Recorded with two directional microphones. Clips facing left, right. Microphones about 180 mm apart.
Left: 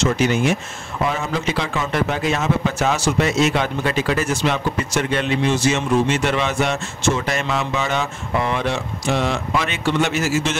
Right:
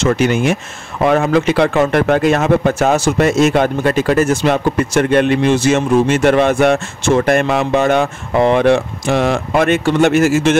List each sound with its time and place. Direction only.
0.0 s speech: 60° right (ahead or behind)